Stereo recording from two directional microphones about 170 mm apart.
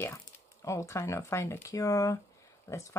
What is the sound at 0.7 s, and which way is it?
Speech, 15° left (ahead or behind).